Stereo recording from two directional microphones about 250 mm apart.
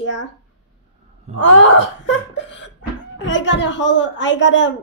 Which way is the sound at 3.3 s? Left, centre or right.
Left.